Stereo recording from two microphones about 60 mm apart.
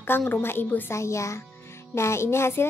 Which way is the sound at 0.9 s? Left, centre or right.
Left.